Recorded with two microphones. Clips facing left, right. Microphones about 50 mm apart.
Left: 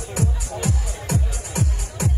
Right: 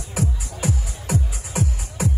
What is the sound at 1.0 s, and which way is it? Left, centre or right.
Music, centre.